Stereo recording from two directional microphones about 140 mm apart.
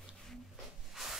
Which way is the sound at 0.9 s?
Centre (ahead or behind).